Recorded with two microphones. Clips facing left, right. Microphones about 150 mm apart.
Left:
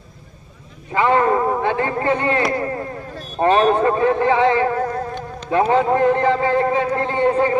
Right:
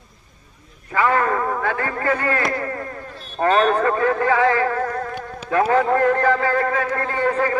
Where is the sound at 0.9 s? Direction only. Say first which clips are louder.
Left 3 dB; 25° left (ahead or behind).